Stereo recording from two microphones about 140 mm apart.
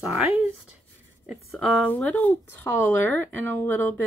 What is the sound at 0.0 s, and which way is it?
Speech, 10° right (ahead or behind).